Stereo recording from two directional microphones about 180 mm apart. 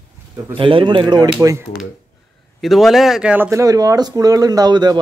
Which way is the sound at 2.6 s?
Centre (ahead or behind).